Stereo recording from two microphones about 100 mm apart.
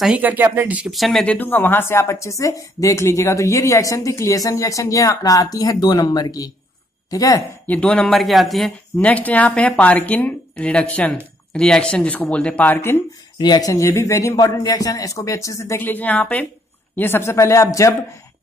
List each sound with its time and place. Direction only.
0.0 s speech: 15° right (ahead or behind)
0.9 s speech: centre (ahead or behind)
1.2 s speech: 15° left (ahead or behind); by 7.4 s 35° left (ahead or behind)
7.6 s speech: 15° left (ahead or behind)
9.0 s speech: 15° left (ahead or behind)
13.4 s speech: 40° left (ahead or behind)
15.8 s speech: 15° left (ahead or behind)